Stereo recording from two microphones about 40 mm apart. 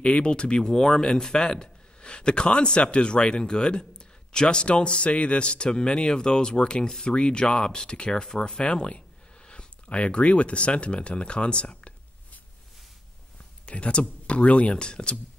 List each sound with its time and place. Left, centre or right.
0.0 s speech: left
11.7 s a sound: left
13.7 s speech: left